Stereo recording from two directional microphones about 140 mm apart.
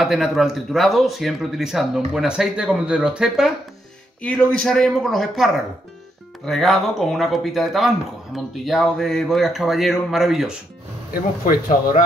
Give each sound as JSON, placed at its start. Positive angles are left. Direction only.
{"t": 0.0, "sound": "speech", "side_deg": 0}
{"t": 4.2, "sound": "speech", "side_deg": 10}
{"t": 11.1, "sound": "speech", "side_deg": 80}